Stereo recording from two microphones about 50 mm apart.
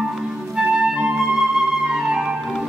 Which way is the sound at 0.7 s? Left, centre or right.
Centre.